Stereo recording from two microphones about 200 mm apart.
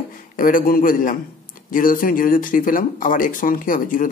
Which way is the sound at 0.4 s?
45° left (ahead or behind).